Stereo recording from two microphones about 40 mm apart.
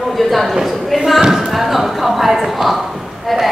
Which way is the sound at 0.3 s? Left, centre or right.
Centre.